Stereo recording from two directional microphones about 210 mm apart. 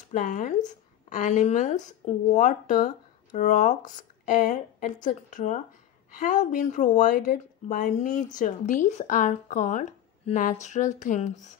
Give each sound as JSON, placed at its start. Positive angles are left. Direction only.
{"t": 0.1, "sound": "speech", "side_deg": 40}